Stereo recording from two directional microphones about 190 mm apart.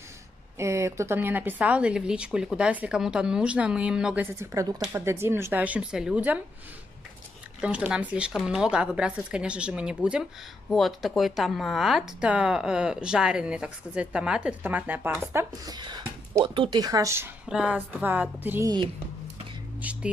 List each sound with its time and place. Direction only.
0.6 s speech: 15° right (ahead or behind)
7.6 s speech: 5° right (ahead or behind)
15.3 s speech: 20° right (ahead or behind)
19.8 s speech: 5° right (ahead or behind)